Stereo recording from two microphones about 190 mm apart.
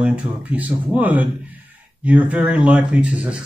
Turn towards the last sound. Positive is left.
turn(degrees=-5)  # may be behind; listen again after turning